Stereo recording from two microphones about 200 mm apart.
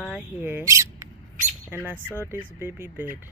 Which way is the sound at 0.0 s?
10° right (ahead or behind).